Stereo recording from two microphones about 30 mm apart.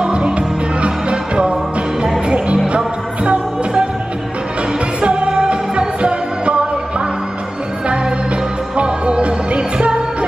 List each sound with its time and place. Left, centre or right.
0.0 s music: right
5.0 s music: right
8.7 s music: right